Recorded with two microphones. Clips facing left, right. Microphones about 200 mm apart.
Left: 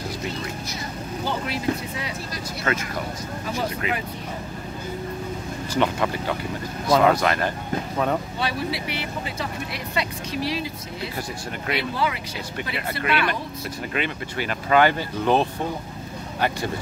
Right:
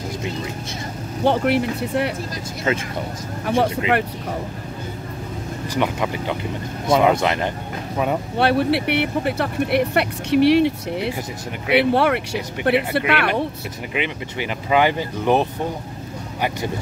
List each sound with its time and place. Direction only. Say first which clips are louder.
1.2 s speech: right 8 dB; 65° right (ahead or behind)
3.4 s speech: right 9 dB; 65° right (ahead or behind)
5.8 s speech: even; 15° right (ahead or behind)
8.4 s speech: right 9 dB; 65° right (ahead or behind)
13.9 s speech: right 3 dB; 15° right (ahead or behind)